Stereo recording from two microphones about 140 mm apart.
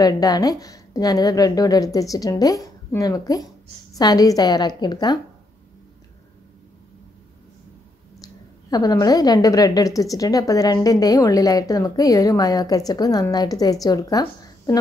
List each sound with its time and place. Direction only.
0.0 s a woman's voice: 25° left (ahead or behind)
8.2 s a woman's voice: 25° left (ahead or behind)